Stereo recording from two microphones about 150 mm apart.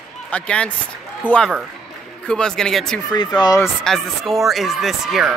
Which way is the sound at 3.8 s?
Centre (ahead or behind).